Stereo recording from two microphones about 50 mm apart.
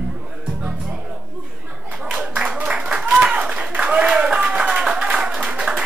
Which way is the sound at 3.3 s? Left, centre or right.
Centre.